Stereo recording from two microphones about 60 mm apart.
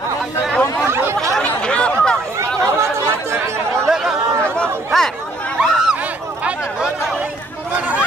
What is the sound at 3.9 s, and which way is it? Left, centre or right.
Chatter, centre.